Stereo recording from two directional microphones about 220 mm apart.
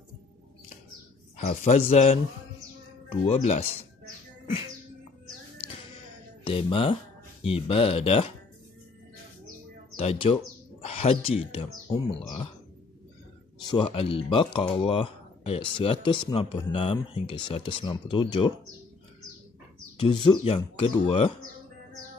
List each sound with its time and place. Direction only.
1.5 s speech: 30° left (ahead or behind)
6.4 s speech: 25° left (ahead or behind)
9.9 s speech: 25° left (ahead or behind)
13.7 s speech: 20° left (ahead or behind)
20.0 s speech: 20° left (ahead or behind)